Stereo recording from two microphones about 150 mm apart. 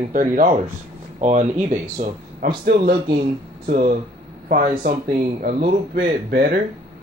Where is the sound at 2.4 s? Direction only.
75° right (ahead or behind).